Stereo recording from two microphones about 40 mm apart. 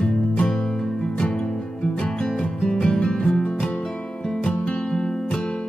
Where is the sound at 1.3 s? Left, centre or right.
Left.